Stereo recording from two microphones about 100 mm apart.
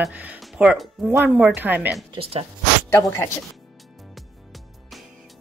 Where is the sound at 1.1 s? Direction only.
20° right (ahead or behind).